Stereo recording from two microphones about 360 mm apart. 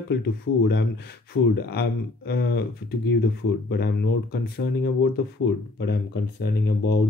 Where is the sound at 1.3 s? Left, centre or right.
Left.